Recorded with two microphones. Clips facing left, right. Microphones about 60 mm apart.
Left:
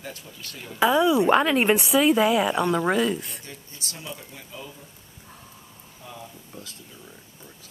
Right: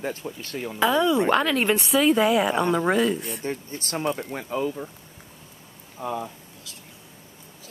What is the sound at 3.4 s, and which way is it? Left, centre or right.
Speech, right.